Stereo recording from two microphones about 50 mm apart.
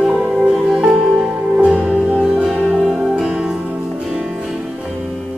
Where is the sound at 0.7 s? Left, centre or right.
Centre.